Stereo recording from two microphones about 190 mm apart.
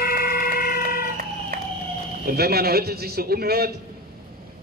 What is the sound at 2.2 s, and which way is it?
A man's voice, 55° right (ahead or behind).